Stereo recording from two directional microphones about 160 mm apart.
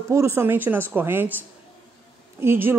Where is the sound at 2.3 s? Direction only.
15° right (ahead or behind).